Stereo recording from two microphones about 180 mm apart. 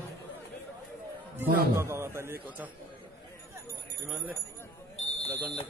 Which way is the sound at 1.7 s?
15° right (ahead or behind).